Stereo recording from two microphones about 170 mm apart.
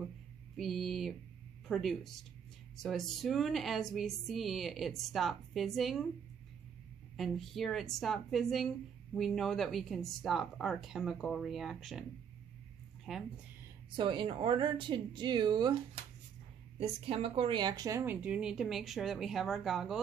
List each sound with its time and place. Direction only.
0.6 s speech: centre (ahead or behind)
7.2 s speech: centre (ahead or behind)
13.1 s speech: centre (ahead or behind)
13.9 s speech: 30° right (ahead or behind); by 20.0 s centre (ahead or behind)